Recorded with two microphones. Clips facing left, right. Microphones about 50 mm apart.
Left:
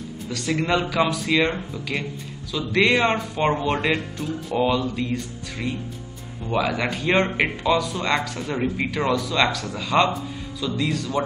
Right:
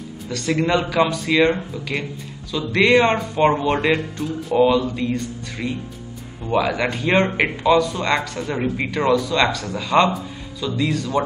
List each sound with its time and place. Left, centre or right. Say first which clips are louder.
0.3 s speech: right 3 dB; centre
2.5 s speech: right 4 dB; centre